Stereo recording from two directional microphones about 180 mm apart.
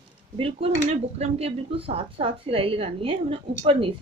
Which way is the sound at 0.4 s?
30° right (ahead or behind).